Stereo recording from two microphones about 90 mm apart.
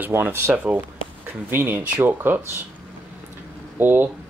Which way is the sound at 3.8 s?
20° right (ahead or behind).